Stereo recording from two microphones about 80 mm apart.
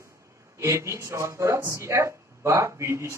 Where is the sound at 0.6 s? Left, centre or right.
Right.